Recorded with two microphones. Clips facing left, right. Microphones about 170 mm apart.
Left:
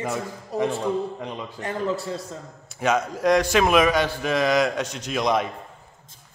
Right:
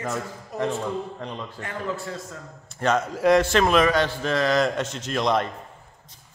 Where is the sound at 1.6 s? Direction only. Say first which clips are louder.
Left 5 dB; 35° left (ahead or behind).